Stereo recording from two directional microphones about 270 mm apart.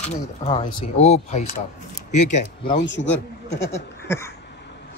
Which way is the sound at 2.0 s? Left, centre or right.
Left.